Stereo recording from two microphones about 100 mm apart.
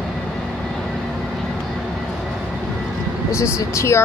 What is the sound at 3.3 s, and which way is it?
Speech, 30° left (ahead or behind).